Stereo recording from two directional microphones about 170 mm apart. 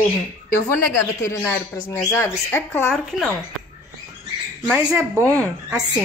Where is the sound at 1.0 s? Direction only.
15° left (ahead or behind).